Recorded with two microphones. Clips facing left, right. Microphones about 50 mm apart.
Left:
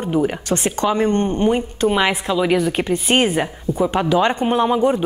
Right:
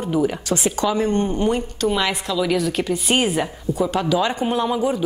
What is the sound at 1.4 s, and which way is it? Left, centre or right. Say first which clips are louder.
Speech: left 3 dB; left.